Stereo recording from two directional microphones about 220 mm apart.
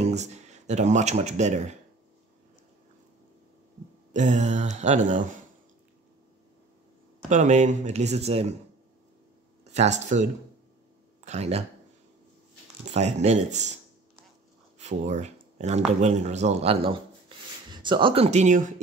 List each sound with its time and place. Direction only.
0.1 s speech: 30° right (ahead or behind)
4.1 s speech: 35° right (ahead or behind)
7.2 s speech: 35° right (ahead or behind)
9.8 s speech: 30° right (ahead or behind)
11.2 s speech: 30° right (ahead or behind)
12.8 s speech: 30° right (ahead or behind)
14.8 s speech: 30° right (ahead or behind)